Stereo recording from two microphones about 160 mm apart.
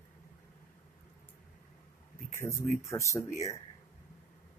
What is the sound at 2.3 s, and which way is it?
Speech, 15° left (ahead or behind).